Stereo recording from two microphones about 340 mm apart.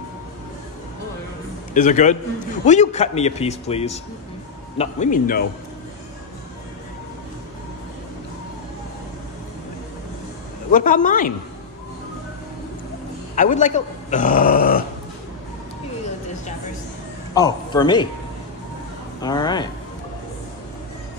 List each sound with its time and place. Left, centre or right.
1.7 s a man's voice: left
10.7 s a man's voice: left
13.4 s a man's voice: left
17.3 s a man's voice: centre
19.2 s speech: centre